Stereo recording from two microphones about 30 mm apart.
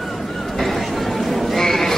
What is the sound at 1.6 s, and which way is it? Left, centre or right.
Sheep, centre.